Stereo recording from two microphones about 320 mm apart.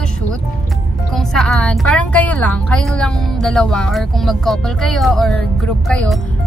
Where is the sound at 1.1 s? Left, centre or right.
Centre.